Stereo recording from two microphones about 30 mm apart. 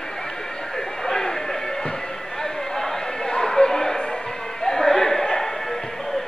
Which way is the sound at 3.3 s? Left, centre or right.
Left.